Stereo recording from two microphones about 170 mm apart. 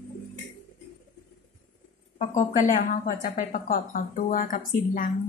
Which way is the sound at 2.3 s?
50° left (ahead or behind).